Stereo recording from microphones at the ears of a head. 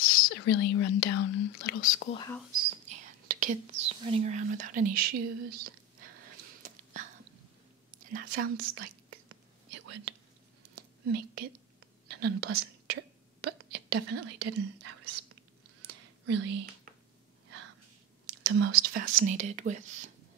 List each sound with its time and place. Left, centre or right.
0.0 s speech: left
2.5 s whispering: right
15.8 s a sound: right
18.2 s speech: right